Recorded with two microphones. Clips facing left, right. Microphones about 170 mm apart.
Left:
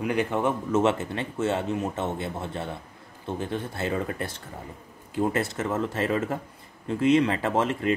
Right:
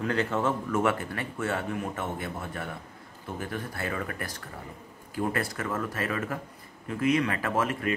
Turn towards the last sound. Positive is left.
turn(degrees=25)  # may be behind; listen again after turning